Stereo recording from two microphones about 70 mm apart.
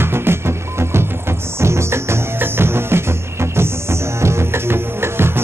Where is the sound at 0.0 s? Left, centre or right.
Right.